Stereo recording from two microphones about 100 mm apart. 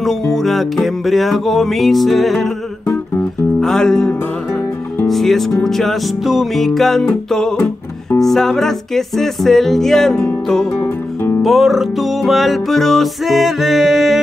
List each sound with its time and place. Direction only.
0.0 s music: centre (ahead or behind)
3.6 s music: 5° left (ahead or behind)
5.0 s speech: centre (ahead or behind)
5.6 s music: 5° left (ahead or behind)
10.8 s music: 25° left (ahead or behind)
11.4 s music: centre (ahead or behind)